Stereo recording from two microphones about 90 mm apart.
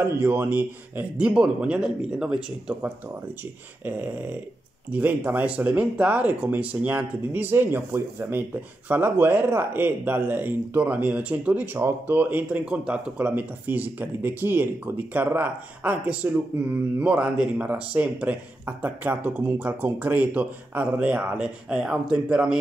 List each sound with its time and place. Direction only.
0.0 s speech: 20° right (ahead or behind)
3.8 s speech: 20° right (ahead or behind)